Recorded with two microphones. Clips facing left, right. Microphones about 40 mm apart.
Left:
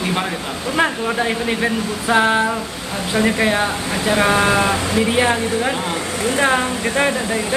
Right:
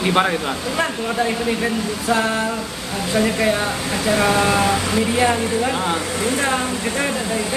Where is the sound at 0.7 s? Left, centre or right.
Left.